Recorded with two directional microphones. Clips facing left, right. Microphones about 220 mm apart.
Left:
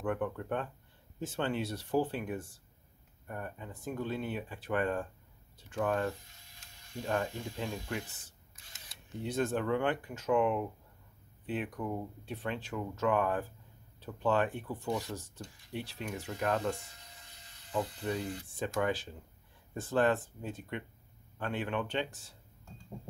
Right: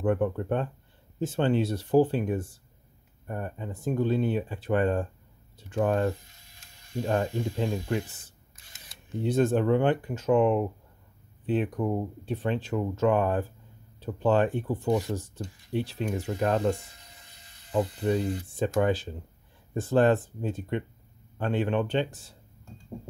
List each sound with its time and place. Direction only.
0.0 s speech: 30° right (ahead or behind)
9.2 s speech: 30° right (ahead or behind)
17.7 s speech: 30° right (ahead or behind)